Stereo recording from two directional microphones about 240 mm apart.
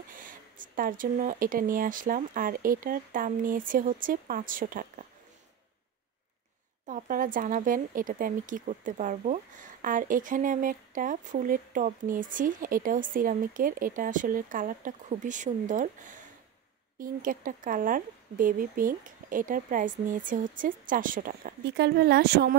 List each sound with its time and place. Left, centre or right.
0.2 s speech: right
6.9 s speech: right